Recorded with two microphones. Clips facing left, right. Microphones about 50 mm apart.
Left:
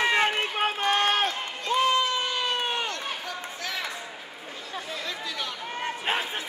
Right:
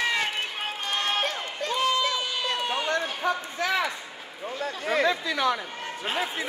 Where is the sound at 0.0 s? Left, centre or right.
Left.